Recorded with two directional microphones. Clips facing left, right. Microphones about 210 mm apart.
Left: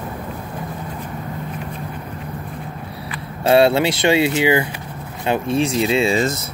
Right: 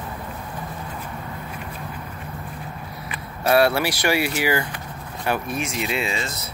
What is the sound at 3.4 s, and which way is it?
Speech, 25° left (ahead or behind).